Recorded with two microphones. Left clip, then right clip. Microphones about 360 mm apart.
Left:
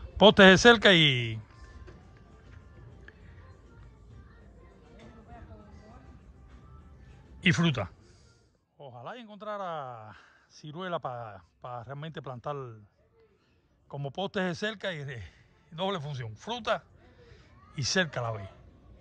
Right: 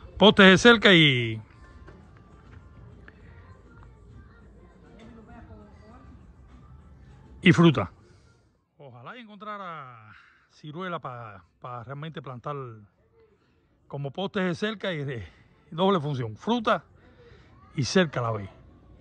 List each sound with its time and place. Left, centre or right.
0.2 s a man's voice: centre
7.3 s a man's voice: centre
13.8 s a man's voice: centre
16.3 s a sound: centre